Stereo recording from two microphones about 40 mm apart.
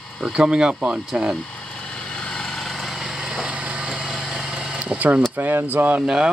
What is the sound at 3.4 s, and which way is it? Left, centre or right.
Vehicle, right.